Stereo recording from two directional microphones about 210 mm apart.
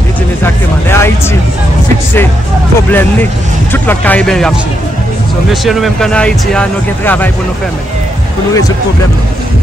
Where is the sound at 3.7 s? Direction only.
10° left (ahead or behind).